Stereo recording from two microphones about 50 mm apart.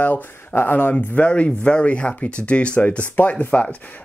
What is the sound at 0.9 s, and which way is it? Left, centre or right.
Speech, left.